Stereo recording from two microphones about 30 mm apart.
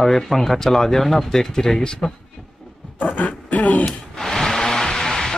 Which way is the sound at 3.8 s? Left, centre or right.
Centre.